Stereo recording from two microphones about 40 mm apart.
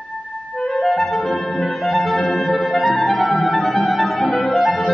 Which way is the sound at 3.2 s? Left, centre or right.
Left.